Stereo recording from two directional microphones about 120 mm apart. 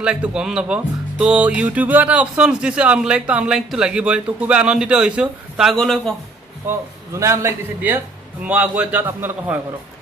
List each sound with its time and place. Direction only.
0.0 s speech: 10° right (ahead or behind)
6.7 s a man's voice: 20° right (ahead or behind)